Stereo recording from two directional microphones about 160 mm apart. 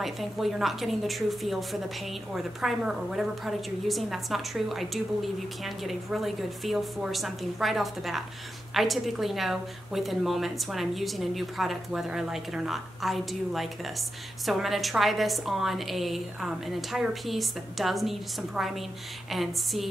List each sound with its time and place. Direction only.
0.0 s a woman's voice: centre (ahead or behind)